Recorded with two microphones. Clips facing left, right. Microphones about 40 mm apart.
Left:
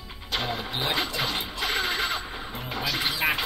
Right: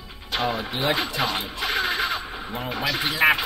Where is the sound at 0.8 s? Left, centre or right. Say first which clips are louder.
Right 4 dB; centre.